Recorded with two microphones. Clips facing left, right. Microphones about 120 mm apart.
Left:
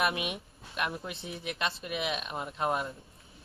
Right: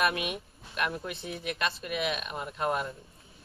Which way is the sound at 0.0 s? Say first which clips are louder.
Right 2 dB; 20° left (ahead or behind).